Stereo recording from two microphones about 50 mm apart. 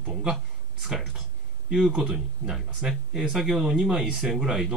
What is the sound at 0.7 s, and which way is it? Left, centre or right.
Speech, centre.